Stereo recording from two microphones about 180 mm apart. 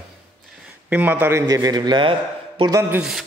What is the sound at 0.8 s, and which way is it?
A man's voice, 10° right (ahead or behind).